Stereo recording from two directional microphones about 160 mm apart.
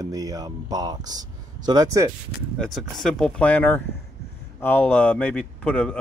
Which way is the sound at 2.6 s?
Centre (ahead or behind).